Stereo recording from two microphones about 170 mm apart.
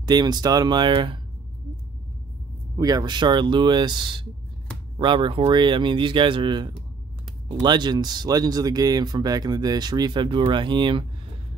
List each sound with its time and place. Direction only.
0.0 s speech: 25° right (ahead or behind)
2.8 s speech: 25° right (ahead or behind)